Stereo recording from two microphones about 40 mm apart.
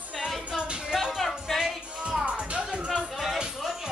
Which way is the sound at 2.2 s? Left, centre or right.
Right.